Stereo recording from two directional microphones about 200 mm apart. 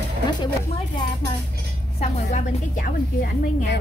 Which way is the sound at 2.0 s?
40° left (ahead or behind).